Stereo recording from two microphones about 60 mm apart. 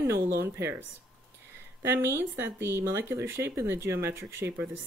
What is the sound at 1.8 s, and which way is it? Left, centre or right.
Speech, right.